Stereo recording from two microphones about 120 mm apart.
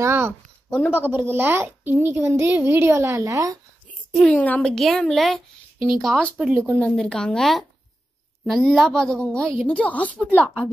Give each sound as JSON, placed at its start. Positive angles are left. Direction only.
{"t": 0.0, "sound": "a woman's voice", "side_deg": -20}
{"t": 0.7, "sound": "speech", "side_deg": 15}
{"t": 0.9, "sound": "a woman's voice", "side_deg": -15}
{"t": 4.1, "sound": "a woman's voice", "side_deg": 5}
{"t": 6.3, "sound": "speech", "side_deg": -10}
{"t": 6.8, "sound": "a woman's voice", "side_deg": 5}